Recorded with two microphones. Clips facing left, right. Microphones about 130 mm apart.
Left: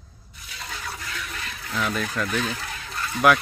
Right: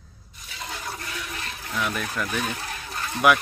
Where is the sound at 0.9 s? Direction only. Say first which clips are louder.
Right 1 dB; 15° right (ahead or behind).